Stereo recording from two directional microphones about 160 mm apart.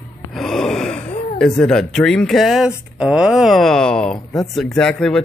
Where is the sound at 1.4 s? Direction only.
5° left (ahead or behind).